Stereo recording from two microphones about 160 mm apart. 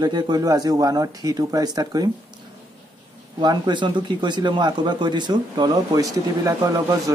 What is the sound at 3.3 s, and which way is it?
Speech, 25° right (ahead or behind).